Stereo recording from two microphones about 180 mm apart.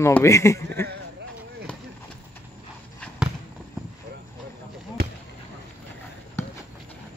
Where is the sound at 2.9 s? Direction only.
5° right (ahead or behind).